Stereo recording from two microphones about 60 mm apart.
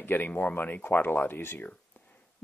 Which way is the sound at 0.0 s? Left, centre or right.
Left.